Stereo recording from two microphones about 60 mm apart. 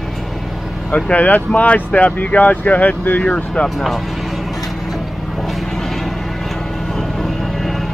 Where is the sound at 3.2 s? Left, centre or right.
Centre.